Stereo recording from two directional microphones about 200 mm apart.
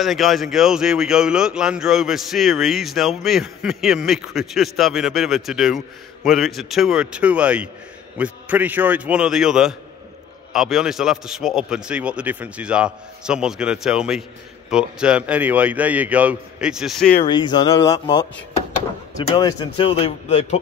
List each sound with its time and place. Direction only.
0.0 s a man's voice: centre (ahead or behind)
17.3 s speech: 25° left (ahead or behind)
19.2 s speech: 25° left (ahead or behind)